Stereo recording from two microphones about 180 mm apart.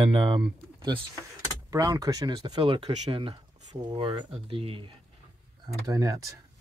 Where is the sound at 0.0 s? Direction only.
30° right (ahead or behind).